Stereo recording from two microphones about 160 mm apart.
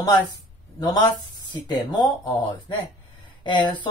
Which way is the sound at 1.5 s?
25° left (ahead or behind).